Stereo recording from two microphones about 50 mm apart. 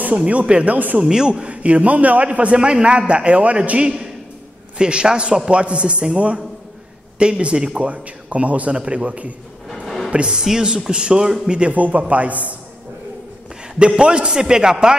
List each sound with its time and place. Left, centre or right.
0.0 s speech: right
0.7 s a man's voice: right
1.0 s speech: centre
9.7 s music: centre
10.1 s speech: centre
11.7 s speech: right
13.7 s speech: right